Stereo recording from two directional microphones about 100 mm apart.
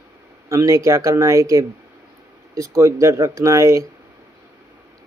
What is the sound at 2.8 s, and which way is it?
Speech, 30° right (ahead or behind).